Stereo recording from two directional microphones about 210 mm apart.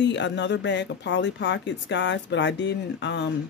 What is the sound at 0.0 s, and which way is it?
Speech, 55° left (ahead or behind).